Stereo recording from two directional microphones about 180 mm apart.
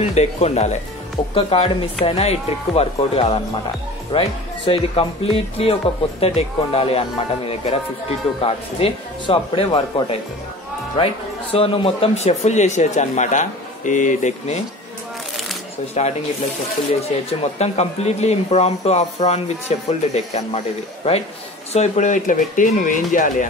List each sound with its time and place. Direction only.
0.0 s speech: 35° left (ahead or behind)
11.5 s speech: 30° left (ahead or behind)
15.9 s speech: 35° left (ahead or behind)